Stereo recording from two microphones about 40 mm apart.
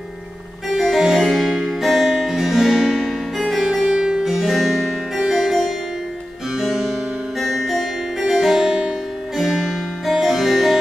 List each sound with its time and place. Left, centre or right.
0.7 s keyboard: centre
1.2 s harpsichord: centre
1.7 s music: centre
3.0 s music: centre
3.9 s music: centre
4.3 s music: centre
6.6 s music: centre
9.4 s music: centre